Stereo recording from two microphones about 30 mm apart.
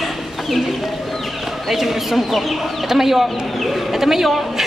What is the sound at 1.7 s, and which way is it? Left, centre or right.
Chicken, centre.